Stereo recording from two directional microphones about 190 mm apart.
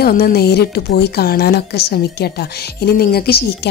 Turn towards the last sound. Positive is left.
turn(degrees=55)  # may be behind; listen again after turning